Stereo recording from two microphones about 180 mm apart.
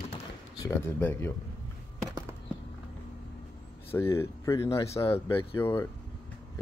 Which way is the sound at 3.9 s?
15° left (ahead or behind).